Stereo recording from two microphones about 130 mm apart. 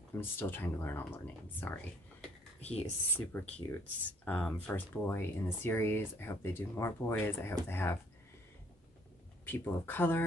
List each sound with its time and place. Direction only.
0.2 s speech: 15° left (ahead or behind)
2.7 s speech: 10° left (ahead or behind)
9.5 s speech: 15° left (ahead or behind)